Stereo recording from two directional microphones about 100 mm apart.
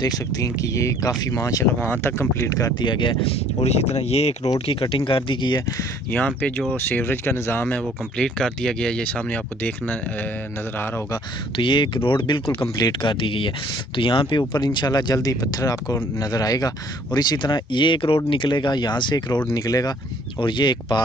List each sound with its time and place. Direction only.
0.0 s speech: 35° left (ahead or behind)
1.8 s speech: 20° left (ahead or behind)
2.8 s speech: 50° left (ahead or behind)
3.6 s speech: 90° left
4.6 s speech: 70° left (ahead or behind); by 5.6 s 55° left (ahead or behind)
6.1 s speech: 10° left (ahead or behind)
8.2 s speech: 5° left (ahead or behind)
11.5 s speech: 55° left (ahead or behind)
20.3 s speech: 50° left (ahead or behind)